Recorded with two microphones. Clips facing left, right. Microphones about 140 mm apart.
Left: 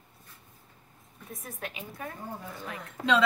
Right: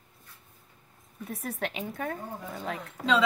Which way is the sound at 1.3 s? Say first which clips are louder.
Right 6 dB; 75° right (ahead or behind).